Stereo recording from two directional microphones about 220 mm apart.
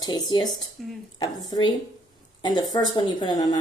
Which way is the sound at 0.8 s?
Centre (ahead or behind).